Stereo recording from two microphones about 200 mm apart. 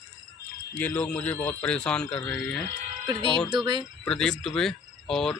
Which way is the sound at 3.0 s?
20° right (ahead or behind).